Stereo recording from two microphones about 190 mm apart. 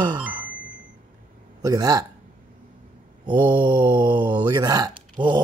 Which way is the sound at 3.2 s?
25° right (ahead or behind).